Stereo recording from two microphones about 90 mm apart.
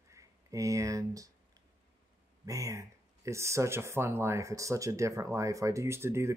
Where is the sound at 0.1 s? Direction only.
40° right (ahead or behind).